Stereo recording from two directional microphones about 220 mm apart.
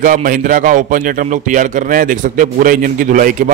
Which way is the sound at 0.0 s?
40° right (ahead or behind).